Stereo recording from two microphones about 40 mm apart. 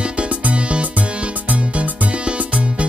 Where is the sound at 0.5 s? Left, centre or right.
Right.